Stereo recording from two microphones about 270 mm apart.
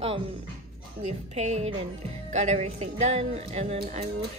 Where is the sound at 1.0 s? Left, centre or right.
Right.